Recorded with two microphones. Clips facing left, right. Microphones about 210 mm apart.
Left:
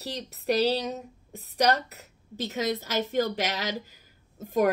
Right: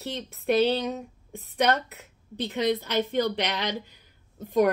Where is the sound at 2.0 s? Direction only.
45° left (ahead or behind).